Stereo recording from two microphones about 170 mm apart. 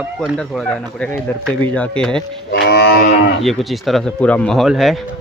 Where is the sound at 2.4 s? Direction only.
75° left (ahead or behind).